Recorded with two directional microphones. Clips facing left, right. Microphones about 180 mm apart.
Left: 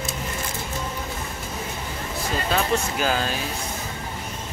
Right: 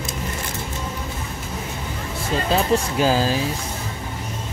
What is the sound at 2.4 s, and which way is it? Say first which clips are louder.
Speech: right 4 dB; 30° right (ahead or behind).